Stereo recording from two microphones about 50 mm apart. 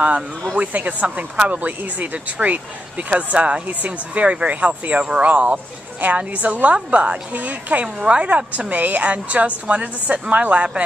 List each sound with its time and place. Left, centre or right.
0.6 s speech: right
5.3 s speech: right